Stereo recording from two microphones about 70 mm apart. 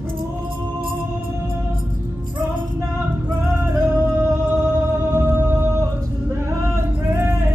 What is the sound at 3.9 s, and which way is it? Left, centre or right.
Music, right.